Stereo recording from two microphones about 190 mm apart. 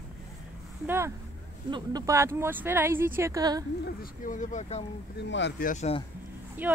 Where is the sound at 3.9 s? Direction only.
45° left (ahead or behind).